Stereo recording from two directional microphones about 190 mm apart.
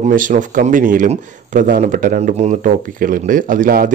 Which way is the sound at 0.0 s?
45° right (ahead or behind).